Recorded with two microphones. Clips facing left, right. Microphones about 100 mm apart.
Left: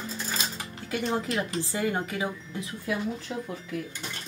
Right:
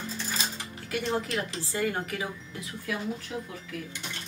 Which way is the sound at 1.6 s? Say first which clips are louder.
Left 1 dB; 20° left (ahead or behind).